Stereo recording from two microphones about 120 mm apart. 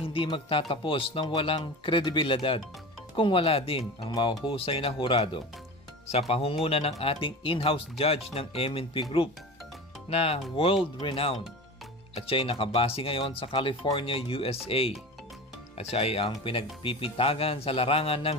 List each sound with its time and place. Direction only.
0.0 s speech: 50° left (ahead or behind)
6.0 s speech: 60° left (ahead or behind)
10.0 s speech: 55° left (ahead or behind)